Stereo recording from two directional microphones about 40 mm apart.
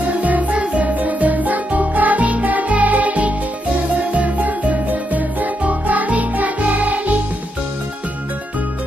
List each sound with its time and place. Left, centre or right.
0.2 s music: right